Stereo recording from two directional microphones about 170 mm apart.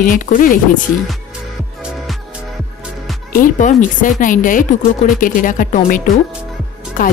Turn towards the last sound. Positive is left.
turn(degrees=50)  # may be behind; listen again after turning